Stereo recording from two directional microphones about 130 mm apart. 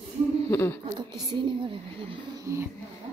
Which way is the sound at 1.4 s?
40° right (ahead or behind).